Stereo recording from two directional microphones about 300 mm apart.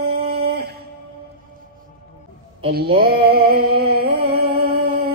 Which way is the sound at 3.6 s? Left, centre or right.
Right.